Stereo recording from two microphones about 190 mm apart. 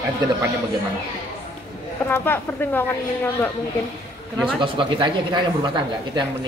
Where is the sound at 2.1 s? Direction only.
10° left (ahead or behind).